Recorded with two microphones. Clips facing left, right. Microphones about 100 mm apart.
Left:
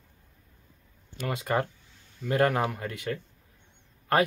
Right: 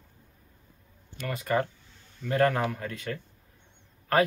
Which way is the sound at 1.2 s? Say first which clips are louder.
Even; 20° left (ahead or behind).